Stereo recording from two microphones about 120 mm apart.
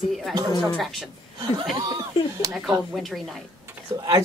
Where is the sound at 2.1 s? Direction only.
45° left (ahead or behind).